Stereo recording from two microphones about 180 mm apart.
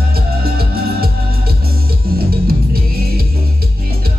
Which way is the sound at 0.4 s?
55° right (ahead or behind).